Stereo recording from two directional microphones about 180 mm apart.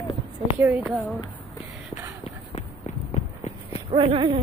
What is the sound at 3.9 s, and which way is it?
Speech, 30° right (ahead or behind).